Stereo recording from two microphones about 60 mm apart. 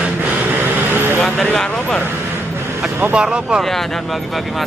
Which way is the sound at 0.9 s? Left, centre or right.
Right.